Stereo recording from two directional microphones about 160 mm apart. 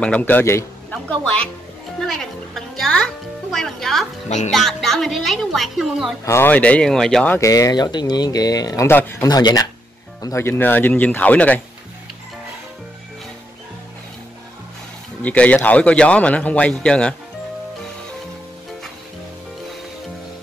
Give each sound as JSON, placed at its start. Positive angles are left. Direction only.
{"t": 0.0, "sound": "a man's voice", "side_deg": 10}
{"t": 2.0, "sound": "music", "side_deg": 5}
{"t": 3.5, "sound": "speech", "side_deg": 5}
{"t": 6.2, "sound": "a man's voice", "side_deg": 15}
{"t": 7.3, "sound": "a man's voice", "side_deg": 20}
{"t": 15.2, "sound": "a man's voice", "side_deg": 10}